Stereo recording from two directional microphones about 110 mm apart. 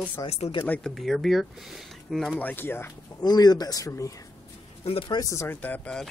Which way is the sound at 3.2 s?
40° left (ahead or behind).